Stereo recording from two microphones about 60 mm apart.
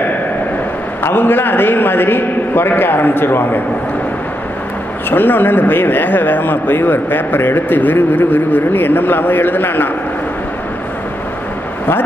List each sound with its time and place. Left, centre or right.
1.0 s speech: left
5.1 s speech: left